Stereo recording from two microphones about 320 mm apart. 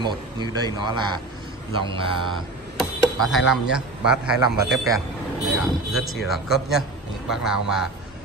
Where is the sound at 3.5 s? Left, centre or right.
Centre.